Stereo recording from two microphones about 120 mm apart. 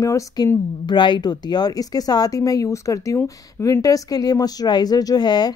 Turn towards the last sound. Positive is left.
turn(degrees=35)  # may be behind; listen again after turning